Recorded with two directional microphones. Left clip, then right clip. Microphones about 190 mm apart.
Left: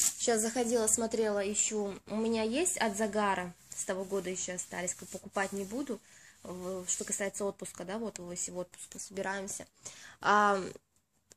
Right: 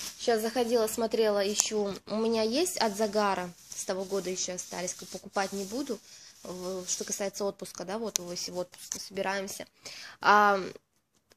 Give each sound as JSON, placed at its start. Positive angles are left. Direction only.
{"t": 0.2, "sound": "a woman's voice", "side_deg": 5}